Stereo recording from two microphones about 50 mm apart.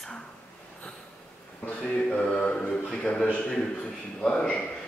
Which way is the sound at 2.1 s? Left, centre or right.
Left.